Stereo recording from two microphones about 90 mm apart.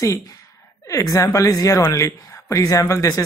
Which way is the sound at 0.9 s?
40° left (ahead or behind).